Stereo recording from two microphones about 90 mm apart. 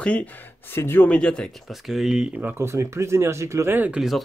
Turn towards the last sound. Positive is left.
turn(degrees=-5)  # may be behind; listen again after turning